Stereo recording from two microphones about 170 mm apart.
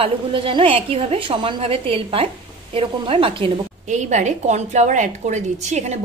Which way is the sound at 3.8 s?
45° right (ahead or behind).